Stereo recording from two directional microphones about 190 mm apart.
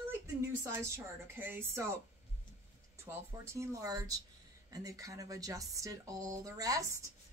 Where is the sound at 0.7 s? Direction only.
10° right (ahead or behind).